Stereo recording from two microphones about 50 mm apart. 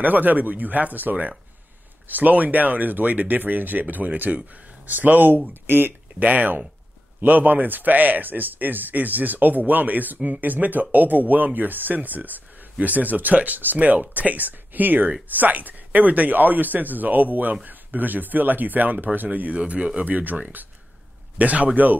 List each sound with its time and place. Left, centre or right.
0.0 s speech: right